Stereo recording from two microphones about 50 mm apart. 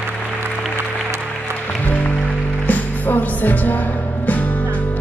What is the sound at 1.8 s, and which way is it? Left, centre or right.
Music, left.